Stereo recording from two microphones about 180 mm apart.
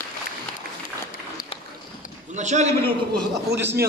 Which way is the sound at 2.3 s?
40° right (ahead or behind).